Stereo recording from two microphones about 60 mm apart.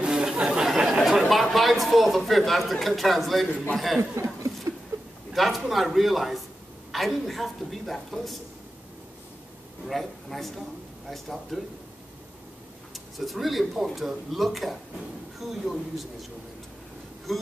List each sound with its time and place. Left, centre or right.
0.0 s chatter: centre
1.3 s a woman's voice: centre
4.1 s chuckle: right
4.9 s a sound: right
5.3 s a man's voice: centre
9.8 s a woman's voice: centre
12.9 s a woman's voice: centre
17.3 s a woman's voice: centre